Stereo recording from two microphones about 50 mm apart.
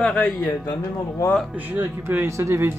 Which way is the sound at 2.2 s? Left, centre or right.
Right.